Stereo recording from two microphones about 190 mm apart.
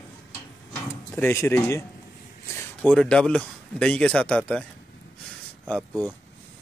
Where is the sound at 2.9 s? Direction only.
5° left (ahead or behind).